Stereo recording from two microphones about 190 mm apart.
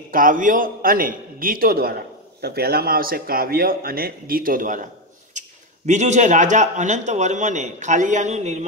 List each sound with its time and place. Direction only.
0.1 s speech: 45° right (ahead or behind)
5.4 s a sound: 40° right (ahead or behind)
5.9 s a man's voice: 40° right (ahead or behind)